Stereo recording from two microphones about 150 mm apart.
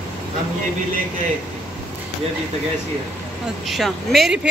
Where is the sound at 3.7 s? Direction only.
Centre (ahead or behind).